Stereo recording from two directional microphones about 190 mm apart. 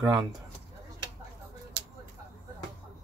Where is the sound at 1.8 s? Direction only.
60° right (ahead or behind).